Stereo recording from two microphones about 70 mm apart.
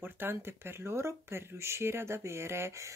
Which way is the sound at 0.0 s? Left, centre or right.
Right.